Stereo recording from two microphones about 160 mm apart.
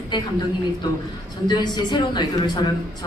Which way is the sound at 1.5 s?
25° left (ahead or behind).